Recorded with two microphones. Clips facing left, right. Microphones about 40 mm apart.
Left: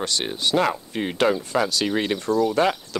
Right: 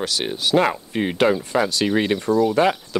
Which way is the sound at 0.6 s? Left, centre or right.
Centre.